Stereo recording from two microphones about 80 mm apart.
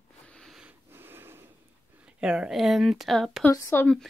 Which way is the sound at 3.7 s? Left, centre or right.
Left.